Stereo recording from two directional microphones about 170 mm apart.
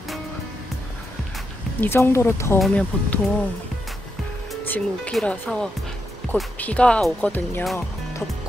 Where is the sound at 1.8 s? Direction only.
15° left (ahead or behind).